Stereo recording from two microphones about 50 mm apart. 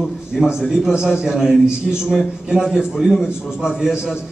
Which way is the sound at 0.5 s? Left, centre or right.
Centre.